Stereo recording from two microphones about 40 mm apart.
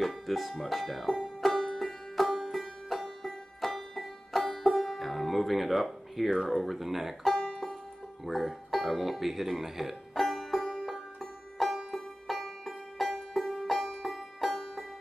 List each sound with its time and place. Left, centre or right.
0.0 s speech: centre
1.4 s music: centre
3.6 s banjo: centre
4.8 s speech: centre
7.3 s banjo: centre
8.3 s speech: centre
10.2 s music: centre